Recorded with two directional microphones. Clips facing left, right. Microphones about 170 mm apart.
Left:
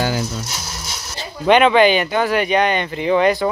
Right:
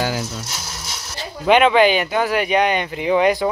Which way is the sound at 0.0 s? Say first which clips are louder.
Left 2 dB; centre (ahead or behind).